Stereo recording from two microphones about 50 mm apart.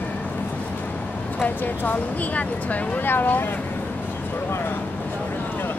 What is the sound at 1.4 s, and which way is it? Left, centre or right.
Speech, left.